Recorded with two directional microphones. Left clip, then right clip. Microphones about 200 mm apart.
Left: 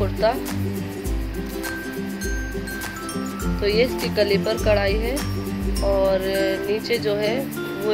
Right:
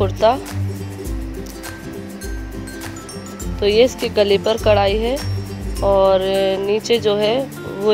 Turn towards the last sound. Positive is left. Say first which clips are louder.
# right 6 dB
turn(degrees=-35)  # may be behind; listen again after turning